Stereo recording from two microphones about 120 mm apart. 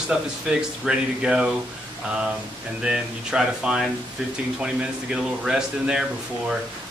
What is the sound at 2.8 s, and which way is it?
A man's voice, 5° right (ahead or behind).